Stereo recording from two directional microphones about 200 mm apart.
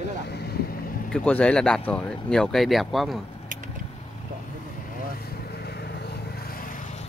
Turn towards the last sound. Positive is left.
turn(degrees=45)  # may be behind; listen again after turning